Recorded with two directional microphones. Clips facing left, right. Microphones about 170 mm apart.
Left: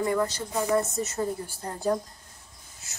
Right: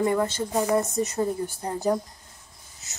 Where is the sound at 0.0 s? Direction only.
25° right (ahead or behind).